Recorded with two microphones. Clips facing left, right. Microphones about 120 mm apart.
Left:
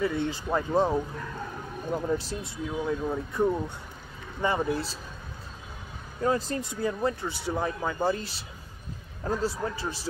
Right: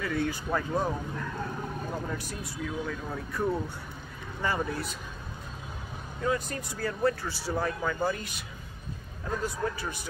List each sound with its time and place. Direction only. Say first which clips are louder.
0.0 s speech: left 2 dB; 25° left (ahead or behind)
2.0 s speech: left 6 dB; 25° left (ahead or behind)
6.2 s speech: left 3 dB; 30° left (ahead or behind)